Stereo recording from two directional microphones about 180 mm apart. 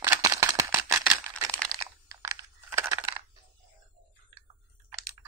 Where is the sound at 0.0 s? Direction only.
15° right (ahead or behind).